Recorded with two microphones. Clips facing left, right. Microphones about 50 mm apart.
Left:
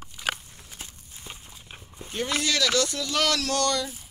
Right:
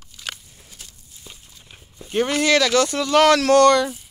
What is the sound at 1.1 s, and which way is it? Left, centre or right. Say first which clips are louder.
Walk: left 2 dB; left.